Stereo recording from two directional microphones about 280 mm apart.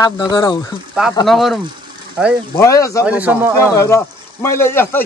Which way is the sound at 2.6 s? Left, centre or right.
Centre.